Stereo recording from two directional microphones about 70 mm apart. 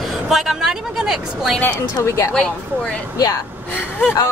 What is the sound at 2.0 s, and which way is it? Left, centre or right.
Speech, left.